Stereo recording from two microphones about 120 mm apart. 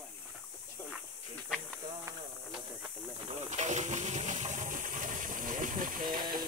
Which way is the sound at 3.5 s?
75° right (ahead or behind).